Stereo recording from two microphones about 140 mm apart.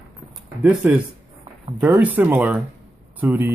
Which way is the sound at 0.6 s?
10° right (ahead or behind).